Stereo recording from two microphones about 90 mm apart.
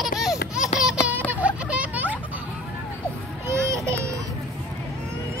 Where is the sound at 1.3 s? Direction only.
15° right (ahead or behind).